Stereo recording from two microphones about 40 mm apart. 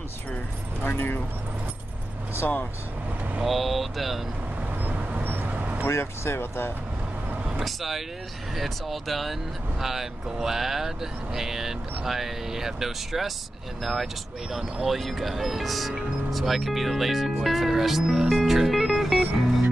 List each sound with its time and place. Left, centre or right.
0.8 s speech: left
3.4 s speech: centre
4.8 s vehicle: right
5.2 s a sound: right
5.5 s vehicle: right
5.9 s speech: left
7.5 s speech: centre
14.5 s speech: centre
18.3 s music: centre